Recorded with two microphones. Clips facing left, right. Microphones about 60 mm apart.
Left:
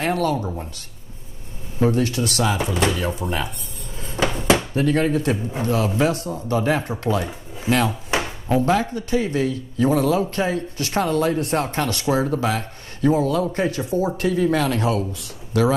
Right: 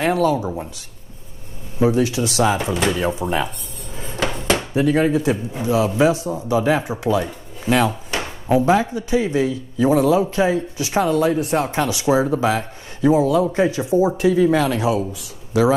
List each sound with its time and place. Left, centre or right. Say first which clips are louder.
0.0 s a man's voice: right 4 dB; centre
1.8 s a man's voice: right 2 dB; centre
3.9 s dishes: right 3 dB; centre
4.2 s dishes: left 2 dB; centre
4.6 s a man's voice: right 2 dB; centre